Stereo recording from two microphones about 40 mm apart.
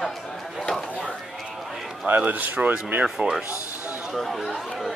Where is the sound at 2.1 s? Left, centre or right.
Right.